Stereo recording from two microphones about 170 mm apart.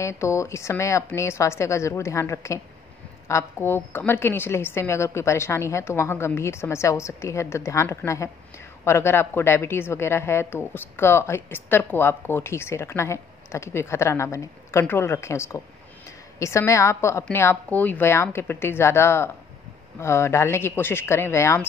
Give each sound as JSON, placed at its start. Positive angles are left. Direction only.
{"t": 0.0, "sound": "a woman's voice", "side_deg": 15}